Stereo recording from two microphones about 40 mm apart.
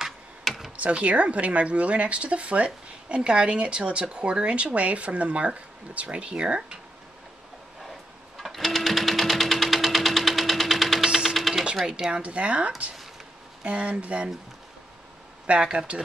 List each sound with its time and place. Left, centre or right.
0.7 s speech: right
8.4 s sewing machine: centre
12.1 s speech: right
15.6 s speech: centre